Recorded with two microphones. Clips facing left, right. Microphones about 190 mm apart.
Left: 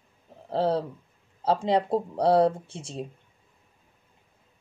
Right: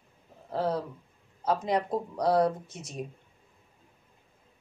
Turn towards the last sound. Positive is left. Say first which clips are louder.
# left 3 dB
turn(degrees=30)  # may be behind; listen again after turning